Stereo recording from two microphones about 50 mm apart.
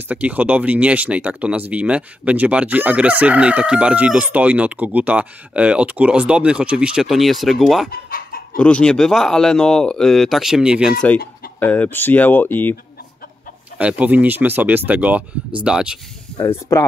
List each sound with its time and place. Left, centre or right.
0.1 s speech: right
7.0 s speech: centre
8.5 s speech: left
8.9 s speech: centre
10.6 s speech: centre
11.6 s speech: left
13.7 s speech: right
15.6 s speech: centre
16.7 s speech: left